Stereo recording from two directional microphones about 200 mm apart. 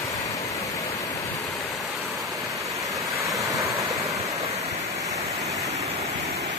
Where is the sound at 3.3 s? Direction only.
15° right (ahead or behind).